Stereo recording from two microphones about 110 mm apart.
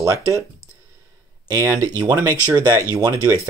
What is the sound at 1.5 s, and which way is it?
Speech, 30° right (ahead or behind).